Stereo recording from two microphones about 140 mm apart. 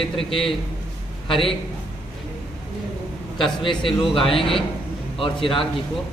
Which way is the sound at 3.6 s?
35° left (ahead or behind).